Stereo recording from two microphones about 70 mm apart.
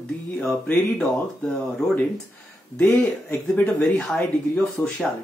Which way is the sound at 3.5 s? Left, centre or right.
Left.